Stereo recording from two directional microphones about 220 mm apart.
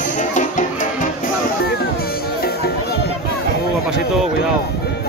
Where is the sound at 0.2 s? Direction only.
35° left (ahead or behind).